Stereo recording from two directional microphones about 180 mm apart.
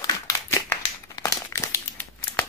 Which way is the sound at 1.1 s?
15° left (ahead or behind).